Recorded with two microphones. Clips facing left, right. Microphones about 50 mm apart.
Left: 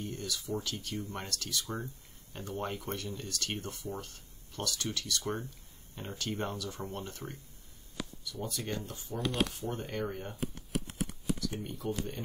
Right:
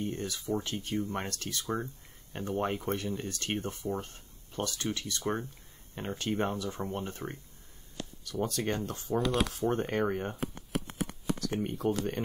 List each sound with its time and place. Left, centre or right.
0.0 s speech: right
8.3 s speech: right
9.7 s speech: right
10.7 s a sound: centre
11.3 s speech: right